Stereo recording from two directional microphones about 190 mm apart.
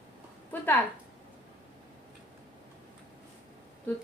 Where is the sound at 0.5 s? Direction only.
10° left (ahead or behind).